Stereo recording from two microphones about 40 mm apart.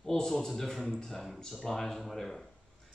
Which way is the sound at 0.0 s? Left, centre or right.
Centre.